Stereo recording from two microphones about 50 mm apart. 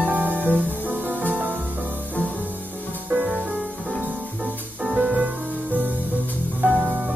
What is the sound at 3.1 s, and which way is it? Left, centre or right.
Music, right.